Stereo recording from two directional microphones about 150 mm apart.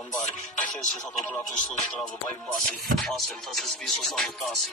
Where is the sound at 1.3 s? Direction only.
5° left (ahead or behind).